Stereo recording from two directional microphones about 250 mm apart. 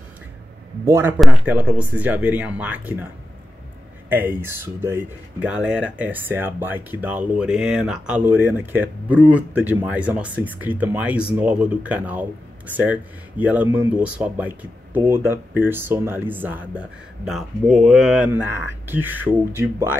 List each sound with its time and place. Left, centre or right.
0.8 s speech: centre
4.1 s speech: centre